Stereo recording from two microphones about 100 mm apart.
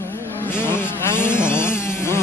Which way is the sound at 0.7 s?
25° left (ahead or behind).